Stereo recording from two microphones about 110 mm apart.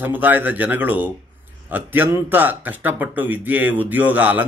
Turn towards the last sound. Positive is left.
turn(degrees=-15)  # may be behind; listen again after turning